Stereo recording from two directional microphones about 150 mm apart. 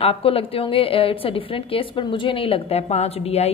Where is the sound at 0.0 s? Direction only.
40° left (ahead or behind).